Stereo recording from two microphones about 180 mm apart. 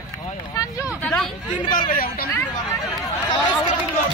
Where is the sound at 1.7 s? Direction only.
50° left (ahead or behind).